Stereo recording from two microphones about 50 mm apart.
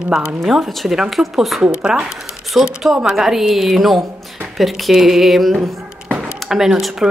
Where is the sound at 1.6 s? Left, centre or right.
Centre.